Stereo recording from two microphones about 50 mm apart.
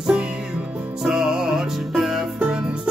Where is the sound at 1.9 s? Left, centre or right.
Centre.